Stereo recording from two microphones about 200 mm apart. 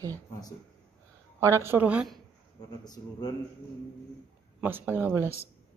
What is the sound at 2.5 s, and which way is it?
Speech, 20° left (ahead or behind).